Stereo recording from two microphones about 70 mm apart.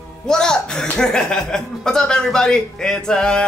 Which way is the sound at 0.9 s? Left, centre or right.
Centre.